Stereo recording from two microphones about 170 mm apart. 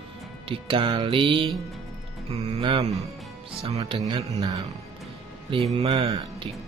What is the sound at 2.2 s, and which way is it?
Speech, 35° right (ahead or behind).